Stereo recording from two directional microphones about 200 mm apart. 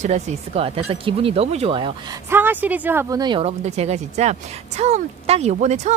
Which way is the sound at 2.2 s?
10° right (ahead or behind).